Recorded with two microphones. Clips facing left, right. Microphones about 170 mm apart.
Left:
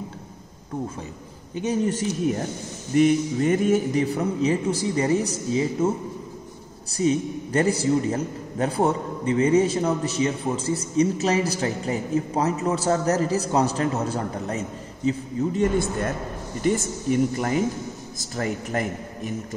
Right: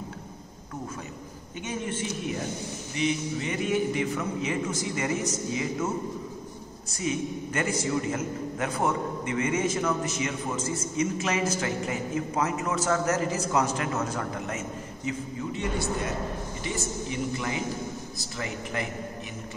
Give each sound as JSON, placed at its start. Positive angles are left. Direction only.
{"t": 1.6, "sound": "a man's voice", "side_deg": 35}
{"t": 2.2, "sound": "a man's voice", "side_deg": 50}
{"t": 6.9, "sound": "a man's voice", "side_deg": 35}